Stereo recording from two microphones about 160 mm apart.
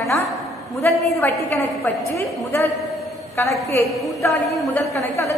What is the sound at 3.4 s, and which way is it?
A woman's voice, 15° left (ahead or behind).